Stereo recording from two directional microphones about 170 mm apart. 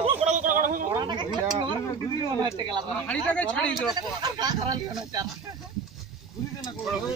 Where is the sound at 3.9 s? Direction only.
25° right (ahead or behind).